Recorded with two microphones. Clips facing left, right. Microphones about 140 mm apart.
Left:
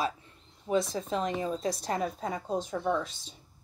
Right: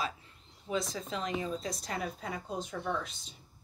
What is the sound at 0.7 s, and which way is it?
A woman's voice, 35° left (ahead or behind).